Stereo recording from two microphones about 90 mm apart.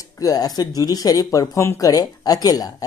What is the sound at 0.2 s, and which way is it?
Speech, 45° left (ahead or behind).